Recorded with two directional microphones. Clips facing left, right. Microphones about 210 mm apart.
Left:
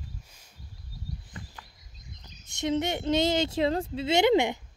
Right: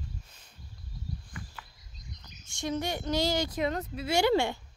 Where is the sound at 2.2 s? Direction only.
20° left (ahead or behind).